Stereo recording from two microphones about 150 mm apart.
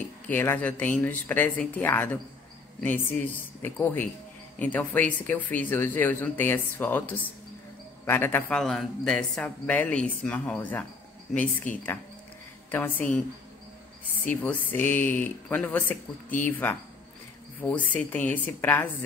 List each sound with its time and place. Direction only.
0.3 s a man's voice: 10° left (ahead or behind)
11.7 s speech: 55° left (ahead or behind)
12.7 s a man's voice: 10° left (ahead or behind)
14.2 s a man's voice: 10° left (ahead or behind)